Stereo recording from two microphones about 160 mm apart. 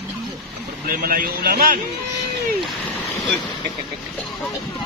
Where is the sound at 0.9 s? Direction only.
60° right (ahead or behind).